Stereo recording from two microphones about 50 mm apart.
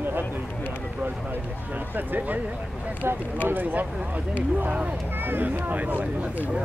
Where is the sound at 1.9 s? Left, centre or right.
Right.